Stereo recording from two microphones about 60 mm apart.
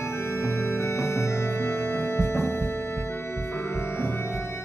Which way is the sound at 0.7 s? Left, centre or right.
Left.